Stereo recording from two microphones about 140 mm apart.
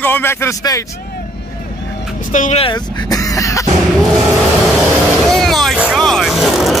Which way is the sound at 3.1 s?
25° left (ahead or behind).